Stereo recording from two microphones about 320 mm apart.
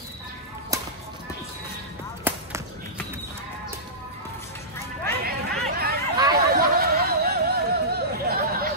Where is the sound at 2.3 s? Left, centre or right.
Centre.